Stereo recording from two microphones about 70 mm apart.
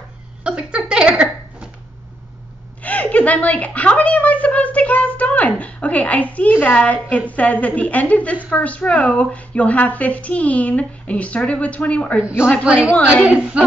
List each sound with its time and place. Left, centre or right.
0.4 s a sound: centre
2.8 s a woman's voice: left
12.6 s speech: centre